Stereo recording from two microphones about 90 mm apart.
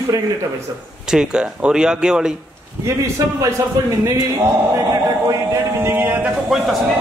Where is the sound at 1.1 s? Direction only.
10° right (ahead or behind).